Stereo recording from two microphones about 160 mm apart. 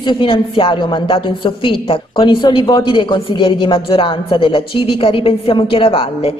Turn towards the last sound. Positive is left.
turn(degrees=35)  # may be behind; listen again after turning